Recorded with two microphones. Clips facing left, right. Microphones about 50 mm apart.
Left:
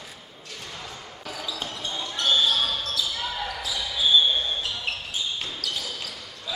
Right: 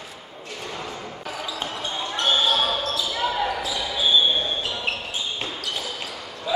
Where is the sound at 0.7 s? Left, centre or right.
Right.